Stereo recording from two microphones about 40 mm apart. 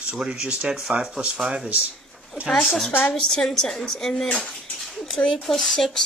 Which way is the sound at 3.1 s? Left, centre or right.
Left.